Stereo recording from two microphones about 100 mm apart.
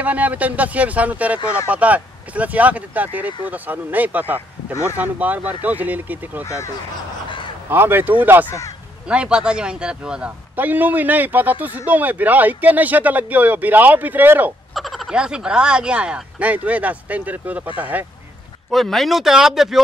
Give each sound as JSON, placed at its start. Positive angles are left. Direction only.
{"t": 0.0, "sound": "a man's voice", "side_deg": -15}
{"t": 6.4, "sound": "speech", "side_deg": 30}
{"t": 7.7, "sound": "a man's voice", "side_deg": -20}
{"t": 14.7, "sound": "a man's voice", "side_deg": 0}
{"t": 18.7, "sound": "speech", "side_deg": 0}